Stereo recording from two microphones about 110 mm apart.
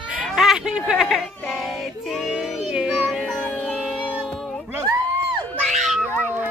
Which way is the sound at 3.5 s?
Centre (ahead or behind).